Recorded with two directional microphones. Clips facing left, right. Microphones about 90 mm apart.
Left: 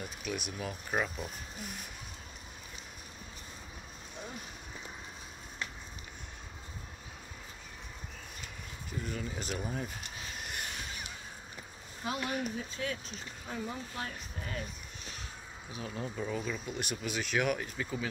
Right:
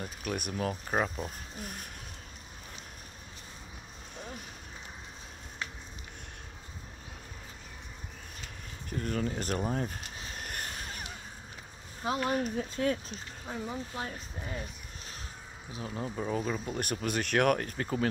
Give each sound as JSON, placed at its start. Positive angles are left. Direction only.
{"t": 0.2, "sound": "speech", "side_deg": -50}
{"t": 0.8, "sound": "speech", "side_deg": -35}
{"t": 8.9, "sound": "speech", "side_deg": -55}
{"t": 10.4, "sound": "a sound", "side_deg": -45}
{"t": 12.0, "sound": "speech", "side_deg": -35}
{"t": 13.5, "sound": "speech", "side_deg": -20}
{"t": 15.7, "sound": "speech", "side_deg": -30}